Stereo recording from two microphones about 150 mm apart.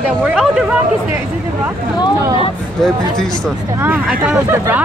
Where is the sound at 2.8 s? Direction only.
Centre (ahead or behind).